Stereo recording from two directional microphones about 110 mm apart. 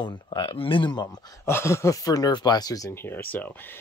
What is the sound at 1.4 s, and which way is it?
Speech, 25° left (ahead or behind).